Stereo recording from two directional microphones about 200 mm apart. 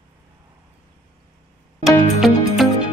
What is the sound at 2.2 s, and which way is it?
Music, centre (ahead or behind).